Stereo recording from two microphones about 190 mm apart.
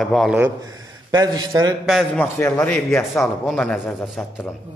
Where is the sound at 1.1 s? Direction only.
20° right (ahead or behind).